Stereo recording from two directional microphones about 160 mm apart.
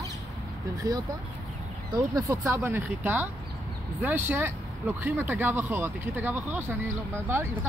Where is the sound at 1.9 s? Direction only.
20° right (ahead or behind).